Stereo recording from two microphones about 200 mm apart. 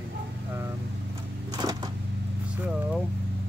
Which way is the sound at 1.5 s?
20° right (ahead or behind).